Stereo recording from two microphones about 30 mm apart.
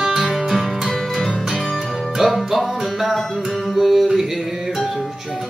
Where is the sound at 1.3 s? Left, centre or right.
Centre.